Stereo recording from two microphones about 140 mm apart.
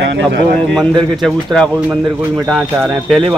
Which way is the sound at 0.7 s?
5° left (ahead or behind).